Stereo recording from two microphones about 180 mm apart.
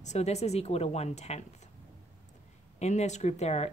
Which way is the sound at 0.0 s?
40° left (ahead or behind).